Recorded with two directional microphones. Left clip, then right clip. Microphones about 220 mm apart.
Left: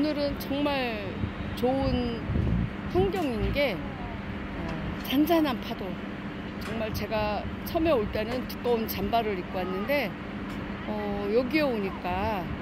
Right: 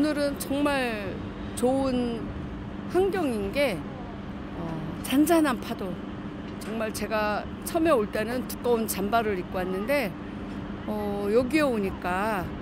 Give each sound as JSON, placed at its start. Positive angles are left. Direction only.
{"t": 0.0, "sound": "speech", "side_deg": -20}
{"t": 5.1, "sound": "speech", "side_deg": -20}
{"t": 6.8, "sound": "speech", "side_deg": -20}